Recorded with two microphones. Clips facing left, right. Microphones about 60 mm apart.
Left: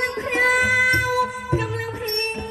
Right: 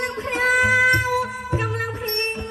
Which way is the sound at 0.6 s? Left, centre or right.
Right.